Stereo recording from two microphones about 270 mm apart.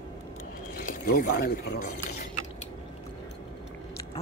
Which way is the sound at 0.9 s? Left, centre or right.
Left.